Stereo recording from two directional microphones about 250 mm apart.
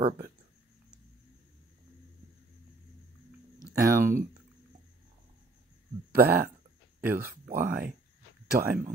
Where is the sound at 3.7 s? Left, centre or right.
Centre.